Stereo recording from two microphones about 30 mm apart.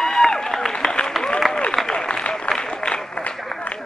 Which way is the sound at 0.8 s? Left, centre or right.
Left.